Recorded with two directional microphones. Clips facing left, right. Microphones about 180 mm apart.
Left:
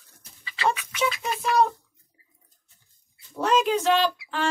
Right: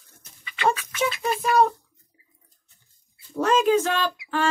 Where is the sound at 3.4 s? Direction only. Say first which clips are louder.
Right 2 dB; 50° right (ahead or behind).